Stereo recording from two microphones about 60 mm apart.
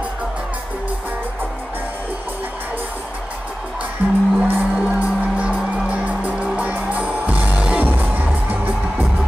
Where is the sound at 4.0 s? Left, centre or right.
Right.